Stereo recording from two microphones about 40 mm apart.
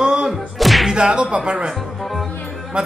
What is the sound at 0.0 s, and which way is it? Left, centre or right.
Music, right.